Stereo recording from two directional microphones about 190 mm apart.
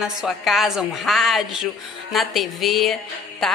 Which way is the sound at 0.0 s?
Centre (ahead or behind).